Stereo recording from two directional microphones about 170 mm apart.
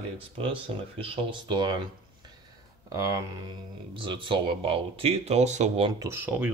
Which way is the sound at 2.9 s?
20° right (ahead or behind).